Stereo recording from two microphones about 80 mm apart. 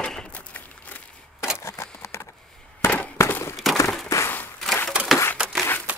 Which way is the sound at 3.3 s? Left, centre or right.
Left.